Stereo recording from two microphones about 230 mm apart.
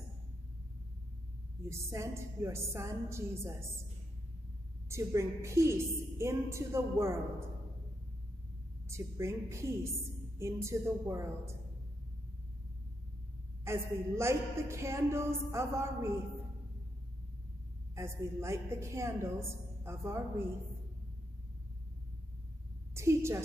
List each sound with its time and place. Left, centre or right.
1.7 s a woman's voice: centre
4.8 s a woman's voice: centre
8.8 s a woman's voice: centre
13.7 s a woman's voice: centre
17.9 s a woman's voice: centre
22.9 s a woman's voice: centre